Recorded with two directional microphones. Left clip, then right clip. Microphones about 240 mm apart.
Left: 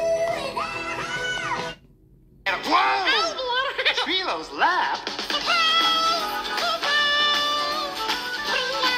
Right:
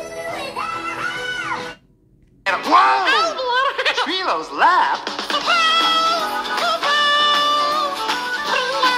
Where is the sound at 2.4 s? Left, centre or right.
Centre.